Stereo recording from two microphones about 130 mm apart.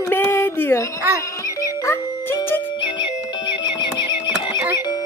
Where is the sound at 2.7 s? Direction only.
40° left (ahead or behind).